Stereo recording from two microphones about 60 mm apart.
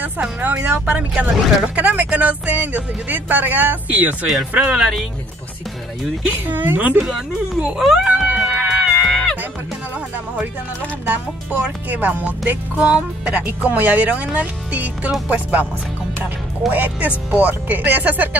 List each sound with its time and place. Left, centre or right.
0.0 s speech: right
4.4 s speech: centre
6.4 s a woman's voice: right
7.0 s speech: centre
8.4 s music: centre
8.9 s music: centre
11.1 s speech: right
16.7 s speech: right